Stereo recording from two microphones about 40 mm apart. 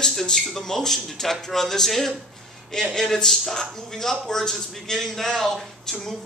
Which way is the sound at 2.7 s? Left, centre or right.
Centre.